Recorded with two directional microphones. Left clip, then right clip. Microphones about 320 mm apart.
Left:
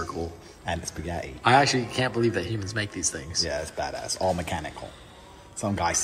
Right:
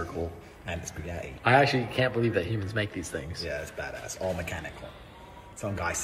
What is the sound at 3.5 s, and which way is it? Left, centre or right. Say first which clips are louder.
Speech: left 5 dB; left.